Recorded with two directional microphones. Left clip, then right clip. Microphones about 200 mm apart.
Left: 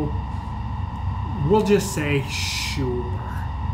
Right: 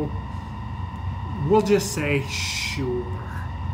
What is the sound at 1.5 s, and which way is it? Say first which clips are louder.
Speech: even; centre (ahead or behind).